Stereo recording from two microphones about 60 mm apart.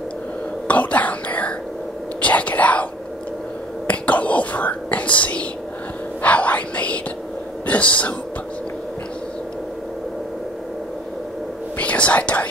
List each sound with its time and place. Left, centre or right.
0.7 s whispering: left
7.6 s speech: left
11.8 s whispering: left